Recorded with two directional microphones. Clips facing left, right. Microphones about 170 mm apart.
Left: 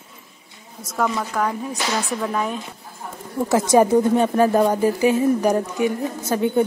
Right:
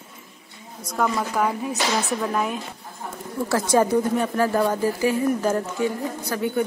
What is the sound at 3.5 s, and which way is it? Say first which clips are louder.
A woman's voice: left 4 dB; 20° left (ahead or behind).